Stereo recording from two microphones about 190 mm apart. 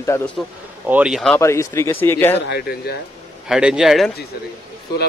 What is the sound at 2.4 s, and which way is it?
Speech, 55° left (ahead or behind).